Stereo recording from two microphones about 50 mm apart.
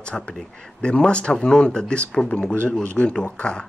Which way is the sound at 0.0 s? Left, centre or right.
Left.